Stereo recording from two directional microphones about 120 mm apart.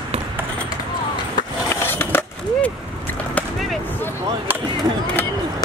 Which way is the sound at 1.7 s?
20° left (ahead or behind).